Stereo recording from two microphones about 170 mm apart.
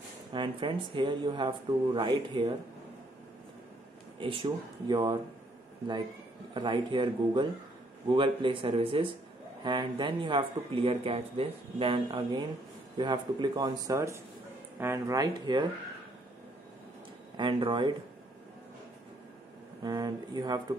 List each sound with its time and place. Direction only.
0.3 s speech: 30° right (ahead or behind)
4.2 s speech: 30° right (ahead or behind)
6.5 s speech: 25° right (ahead or behind)
17.4 s speech: 30° right (ahead or behind)
19.8 s speech: 20° right (ahead or behind)